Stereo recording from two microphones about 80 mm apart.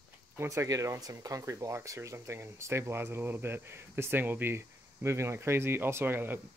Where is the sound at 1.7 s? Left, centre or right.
Right.